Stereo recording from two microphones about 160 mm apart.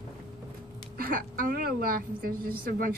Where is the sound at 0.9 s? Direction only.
65° right (ahead or behind).